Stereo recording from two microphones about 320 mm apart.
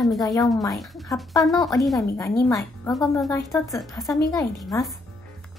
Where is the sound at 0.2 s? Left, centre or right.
Centre.